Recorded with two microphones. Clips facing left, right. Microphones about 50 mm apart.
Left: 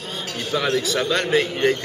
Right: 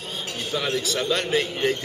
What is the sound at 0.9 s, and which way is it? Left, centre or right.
Speech, centre.